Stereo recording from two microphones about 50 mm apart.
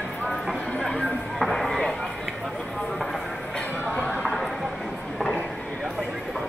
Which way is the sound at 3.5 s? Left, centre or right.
Left.